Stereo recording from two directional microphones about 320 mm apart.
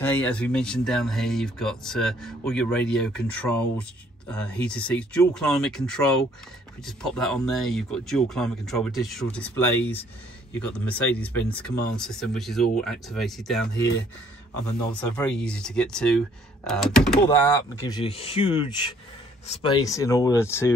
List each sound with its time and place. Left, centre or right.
0.0 s speech: centre
13.7 s speech: left
14.9 s speech: centre